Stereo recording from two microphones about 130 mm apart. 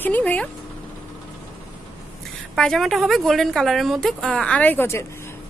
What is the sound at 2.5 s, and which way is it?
A woman's voice, centre (ahead or behind).